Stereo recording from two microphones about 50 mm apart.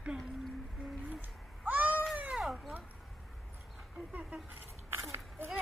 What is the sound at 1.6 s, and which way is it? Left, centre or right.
Cat, right.